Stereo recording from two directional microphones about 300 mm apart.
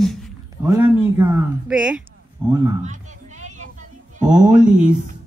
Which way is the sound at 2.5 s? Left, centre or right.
Centre.